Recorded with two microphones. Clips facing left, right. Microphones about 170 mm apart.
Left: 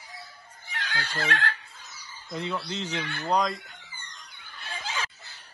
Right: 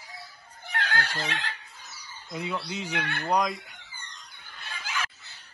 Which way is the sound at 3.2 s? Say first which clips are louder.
Even; 10° right (ahead or behind).